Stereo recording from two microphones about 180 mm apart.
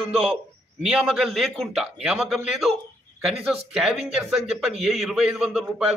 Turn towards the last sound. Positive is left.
turn(degrees=0)  # may be behind; listen again after turning